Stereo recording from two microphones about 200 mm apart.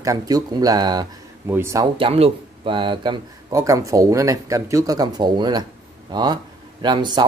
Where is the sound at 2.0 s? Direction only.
25° right (ahead or behind).